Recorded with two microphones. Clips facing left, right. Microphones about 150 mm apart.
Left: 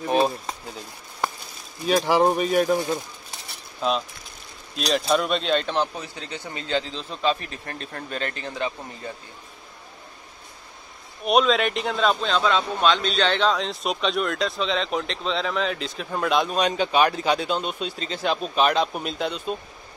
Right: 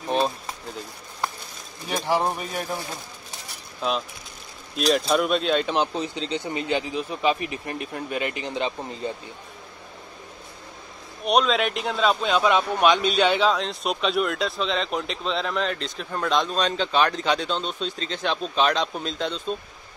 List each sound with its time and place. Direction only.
1.9 s speech: 90° left
4.7 s a man's voice: centre (ahead or behind)
5.7 s speech: 20° right (ahead or behind)
11.2 s a man's voice: centre (ahead or behind)